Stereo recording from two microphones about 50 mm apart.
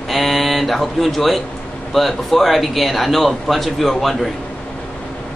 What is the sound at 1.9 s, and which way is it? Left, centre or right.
A man's voice, centre.